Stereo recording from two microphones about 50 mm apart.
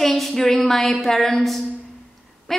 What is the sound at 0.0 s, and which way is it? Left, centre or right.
A woman's voice, centre.